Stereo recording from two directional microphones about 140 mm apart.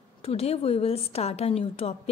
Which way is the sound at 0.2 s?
45° left (ahead or behind).